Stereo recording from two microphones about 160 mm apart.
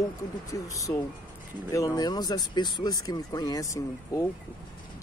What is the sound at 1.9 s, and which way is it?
Speech, 25° left (ahead or behind).